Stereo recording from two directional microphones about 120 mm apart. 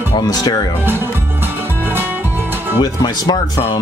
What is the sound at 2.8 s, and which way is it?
Speech, 35° left (ahead or behind).